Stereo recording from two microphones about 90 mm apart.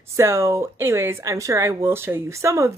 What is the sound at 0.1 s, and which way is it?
Speech, 30° right (ahead or behind).